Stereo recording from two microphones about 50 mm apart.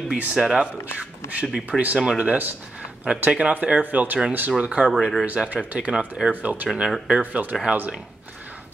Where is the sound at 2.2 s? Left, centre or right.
Right.